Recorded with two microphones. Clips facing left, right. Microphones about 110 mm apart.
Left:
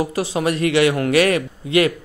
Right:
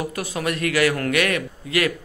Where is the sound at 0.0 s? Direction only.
30° left (ahead or behind).